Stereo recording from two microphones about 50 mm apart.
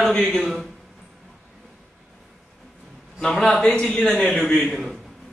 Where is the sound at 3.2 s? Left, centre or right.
Centre.